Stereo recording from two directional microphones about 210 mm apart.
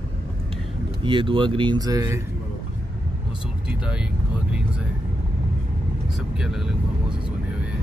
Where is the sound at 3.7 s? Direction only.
5° right (ahead or behind).